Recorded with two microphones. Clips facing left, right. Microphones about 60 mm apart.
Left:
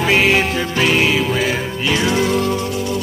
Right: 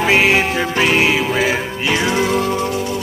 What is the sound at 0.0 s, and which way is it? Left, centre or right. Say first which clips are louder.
Music: right 1 dB; centre.